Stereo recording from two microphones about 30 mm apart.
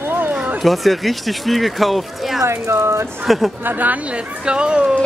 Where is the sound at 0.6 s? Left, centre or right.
Centre.